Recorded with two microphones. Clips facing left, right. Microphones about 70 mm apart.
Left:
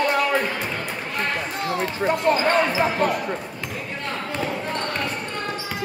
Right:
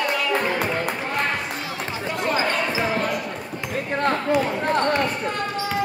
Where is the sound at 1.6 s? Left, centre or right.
Left.